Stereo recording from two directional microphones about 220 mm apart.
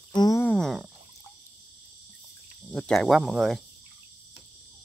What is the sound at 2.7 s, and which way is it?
Speech, centre (ahead or behind).